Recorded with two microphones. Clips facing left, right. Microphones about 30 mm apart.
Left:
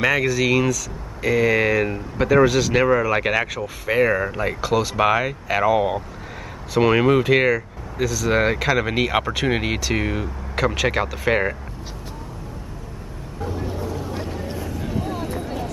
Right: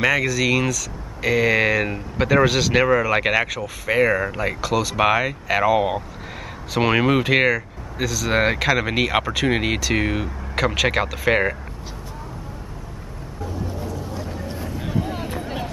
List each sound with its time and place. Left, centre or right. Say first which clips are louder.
0.0 s speech: even; centre
1.2 s speech: even; centre
3.4 s speech: even; centre
4.6 s speech: left 2 dB; centre
4.9 s speech: even; centre
7.5 s speech: left 1 dB; centre
8.3 s speech: even; centre
8.5 s speech: even; centre
14.8 s vehicle: right 1 dB; centre
15.4 s vehicle: even; right